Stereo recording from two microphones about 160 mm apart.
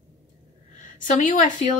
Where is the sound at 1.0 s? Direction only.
55° left (ahead or behind).